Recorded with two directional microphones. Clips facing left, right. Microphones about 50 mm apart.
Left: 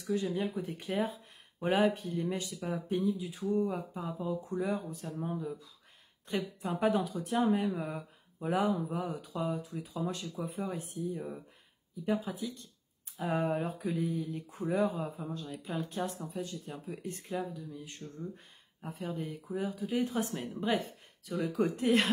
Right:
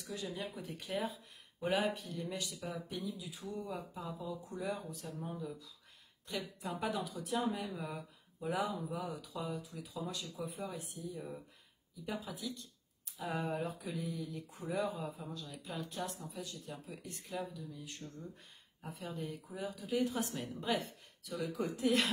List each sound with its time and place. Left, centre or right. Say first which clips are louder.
0.0 s speech: left 9 dB; left